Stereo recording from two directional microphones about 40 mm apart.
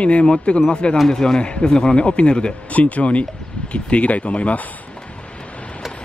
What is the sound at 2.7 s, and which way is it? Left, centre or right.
Speech, left.